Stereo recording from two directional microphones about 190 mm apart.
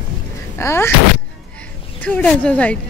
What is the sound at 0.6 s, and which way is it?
Speech, 15° left (ahead or behind).